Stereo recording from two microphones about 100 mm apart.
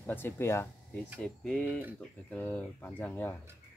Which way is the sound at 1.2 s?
10° left (ahead or behind).